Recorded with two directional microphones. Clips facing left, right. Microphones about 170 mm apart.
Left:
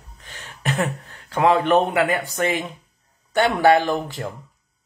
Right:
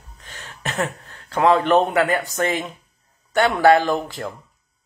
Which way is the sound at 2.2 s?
15° left (ahead or behind).